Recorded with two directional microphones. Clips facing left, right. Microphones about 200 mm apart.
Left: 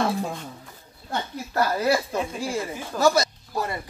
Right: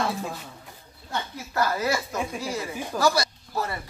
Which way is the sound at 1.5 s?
30° left (ahead or behind).